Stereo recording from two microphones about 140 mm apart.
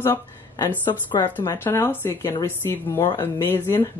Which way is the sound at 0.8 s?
30° left (ahead or behind).